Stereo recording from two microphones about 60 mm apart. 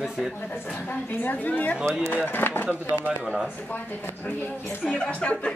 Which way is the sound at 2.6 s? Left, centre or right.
Right.